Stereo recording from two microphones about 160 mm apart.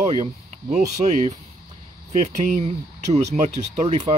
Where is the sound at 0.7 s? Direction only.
45° right (ahead or behind).